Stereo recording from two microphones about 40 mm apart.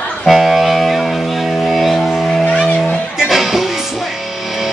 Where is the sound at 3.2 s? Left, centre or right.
Centre.